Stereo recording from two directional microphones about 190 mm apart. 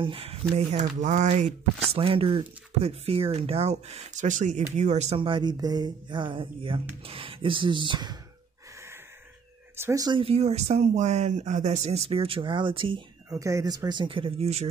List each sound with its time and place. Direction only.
0.0 s speech: 30° right (ahead or behind)
9.8 s speech: 15° right (ahead or behind); by 14.7 s 35° right (ahead or behind)